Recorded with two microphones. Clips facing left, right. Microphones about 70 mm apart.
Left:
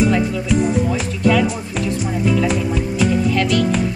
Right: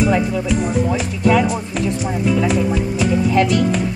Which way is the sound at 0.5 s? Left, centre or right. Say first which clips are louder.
Left 3 dB; centre.